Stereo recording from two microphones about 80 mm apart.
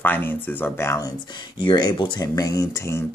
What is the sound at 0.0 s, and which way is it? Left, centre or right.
Speech, left.